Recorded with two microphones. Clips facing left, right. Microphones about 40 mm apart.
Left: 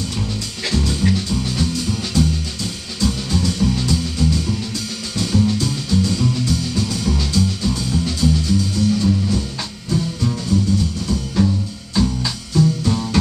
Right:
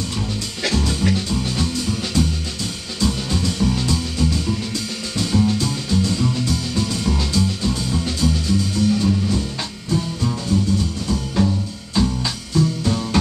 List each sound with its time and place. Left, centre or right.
0.7 s music: centre